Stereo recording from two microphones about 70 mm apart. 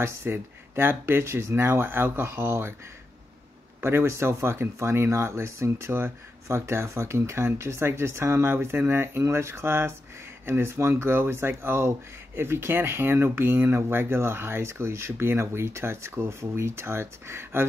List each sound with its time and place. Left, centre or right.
0.0 s speech: right
3.8 s speech: right
6.4 s speech: right